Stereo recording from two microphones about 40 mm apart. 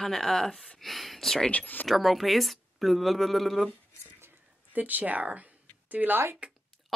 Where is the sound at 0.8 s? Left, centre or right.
Centre.